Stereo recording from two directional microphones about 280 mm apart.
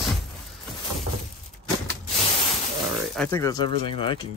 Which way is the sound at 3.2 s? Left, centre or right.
Centre.